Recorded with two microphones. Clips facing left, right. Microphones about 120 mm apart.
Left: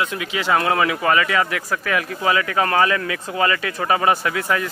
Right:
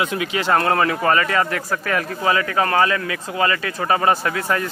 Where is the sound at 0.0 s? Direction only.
Centre (ahead or behind).